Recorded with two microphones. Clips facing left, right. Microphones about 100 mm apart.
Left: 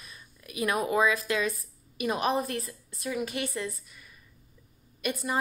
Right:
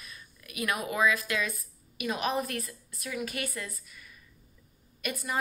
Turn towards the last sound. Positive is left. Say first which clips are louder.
# left 4 dB
turn(degrees=25)  # may be behind; listen again after turning